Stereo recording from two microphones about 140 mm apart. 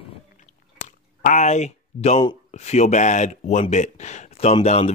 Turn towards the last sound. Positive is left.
turn(degrees=50)  # may be behind; listen again after turning